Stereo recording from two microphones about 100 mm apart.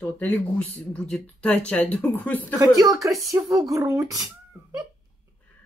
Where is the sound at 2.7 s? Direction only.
35° right (ahead or behind).